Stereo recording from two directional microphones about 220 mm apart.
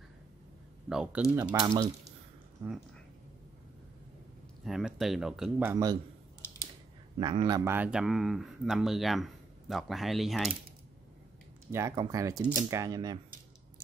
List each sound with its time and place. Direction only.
0.8 s speech: centre (ahead or behind)
1.3 s speech: 15° right (ahead or behind)
4.6 s speech: centre (ahead or behind)
6.4 s a sound: 10° left (ahead or behind)
7.2 s a man's voice: 20° right (ahead or behind)
7.6 s speech: 10° right (ahead or behind)
11.7 s speech: 15° right (ahead or behind)